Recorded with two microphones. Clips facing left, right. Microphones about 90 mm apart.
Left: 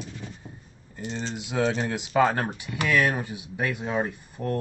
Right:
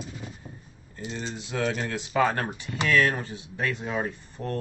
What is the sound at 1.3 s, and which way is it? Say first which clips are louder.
Speech: left 3 dB; 15° left (ahead or behind).